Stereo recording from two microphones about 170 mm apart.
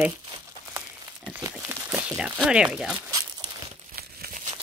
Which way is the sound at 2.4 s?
5° right (ahead or behind).